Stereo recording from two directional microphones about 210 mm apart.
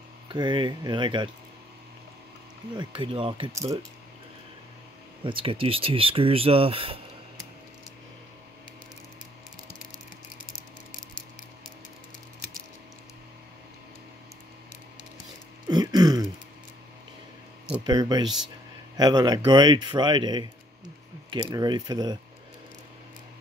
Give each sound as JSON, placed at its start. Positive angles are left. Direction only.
{"t": 0.3, "sound": "speech", "side_deg": -20}
{"t": 2.7, "sound": "speech", "side_deg": -20}
{"t": 5.2, "sound": "speech", "side_deg": -25}
{"t": 15.7, "sound": "throat clearing", "side_deg": -20}
{"t": 17.8, "sound": "speech", "side_deg": -20}